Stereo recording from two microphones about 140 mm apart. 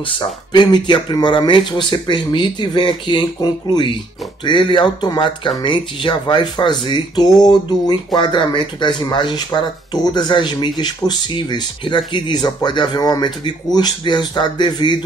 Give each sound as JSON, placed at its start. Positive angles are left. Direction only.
{"t": 0.2, "sound": "speech", "side_deg": 30}